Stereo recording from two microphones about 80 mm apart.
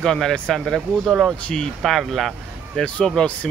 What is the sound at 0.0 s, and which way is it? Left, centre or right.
Speech, centre.